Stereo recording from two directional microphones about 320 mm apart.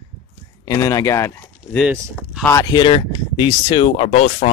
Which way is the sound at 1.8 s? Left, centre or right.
Centre.